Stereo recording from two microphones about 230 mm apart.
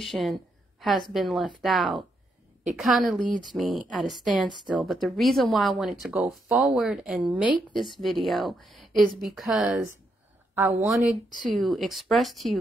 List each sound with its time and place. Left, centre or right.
0.0 s a woman's voice: centre
3.2 s speech: right
3.9 s a woman's voice: centre